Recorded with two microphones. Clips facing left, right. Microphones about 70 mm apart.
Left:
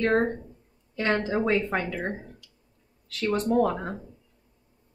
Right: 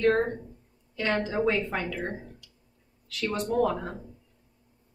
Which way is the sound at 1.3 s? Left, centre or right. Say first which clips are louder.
Left 2 dB; left.